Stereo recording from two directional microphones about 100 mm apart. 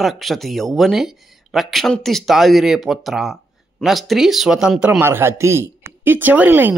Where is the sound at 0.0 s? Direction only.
Centre (ahead or behind); by 6.7 s 20° right (ahead or behind).